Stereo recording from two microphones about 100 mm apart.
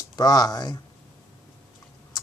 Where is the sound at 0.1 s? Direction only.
40° left (ahead or behind).